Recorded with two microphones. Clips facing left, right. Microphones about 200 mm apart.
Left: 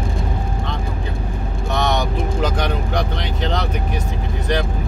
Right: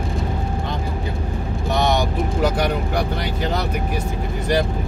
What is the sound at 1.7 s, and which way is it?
Vehicle, 10° right (ahead or behind).